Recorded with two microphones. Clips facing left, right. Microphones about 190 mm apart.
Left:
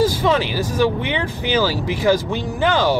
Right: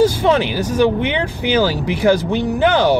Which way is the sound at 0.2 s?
20° right (ahead or behind).